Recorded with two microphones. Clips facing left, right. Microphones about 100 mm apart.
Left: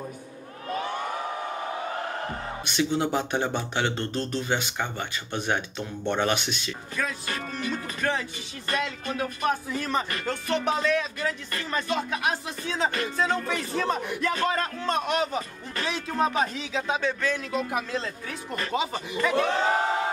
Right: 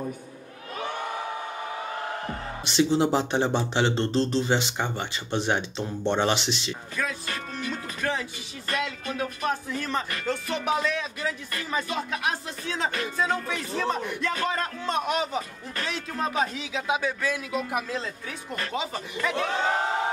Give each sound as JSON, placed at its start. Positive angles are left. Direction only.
{"t": 2.6, "sound": "speech", "side_deg": -25}
{"t": 6.7, "sound": "speech", "side_deg": 0}